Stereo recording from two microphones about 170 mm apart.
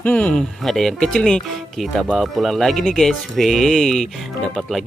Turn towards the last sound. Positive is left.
turn(degrees=0)  # may be behind; listen again after turning